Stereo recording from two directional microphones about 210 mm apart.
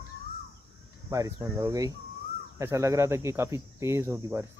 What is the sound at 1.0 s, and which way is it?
Speech, 15° right (ahead or behind).